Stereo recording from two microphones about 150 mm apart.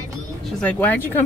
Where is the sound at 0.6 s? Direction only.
10° left (ahead or behind).